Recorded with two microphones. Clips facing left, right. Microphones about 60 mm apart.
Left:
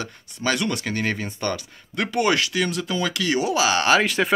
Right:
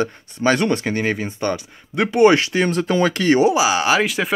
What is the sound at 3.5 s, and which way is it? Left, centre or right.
Speech, centre.